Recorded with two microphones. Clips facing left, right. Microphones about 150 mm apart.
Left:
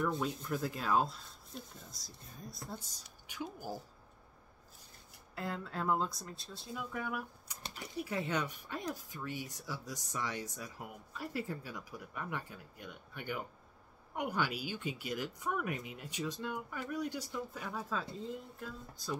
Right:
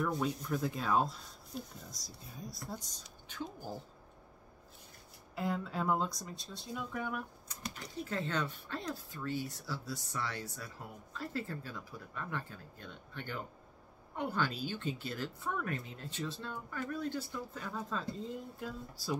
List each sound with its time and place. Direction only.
0.2 s speech: centre (ahead or behind)
3.3 s speech: 10° left (ahead or behind)
5.3 s speech: centre (ahead or behind)